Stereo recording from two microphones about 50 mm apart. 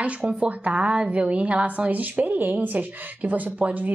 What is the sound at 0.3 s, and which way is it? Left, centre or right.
A woman's voice, right.